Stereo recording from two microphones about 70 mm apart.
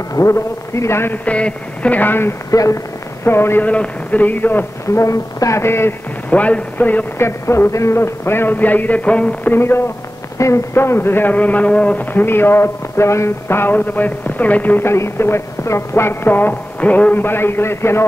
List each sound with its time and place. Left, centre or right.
0.1 s speech: left
1.1 s speech: centre
2.5 s speech: left
3.3 s speech: left
3.6 s speech: centre
4.9 s speech: left
6.3 s speech: centre
7.2 s speech: left; by 9.5 s centre
9.5 s speech: left
10.3 s speech: left
10.7 s speech: left
13.7 s speech: left
14.9 s speech: left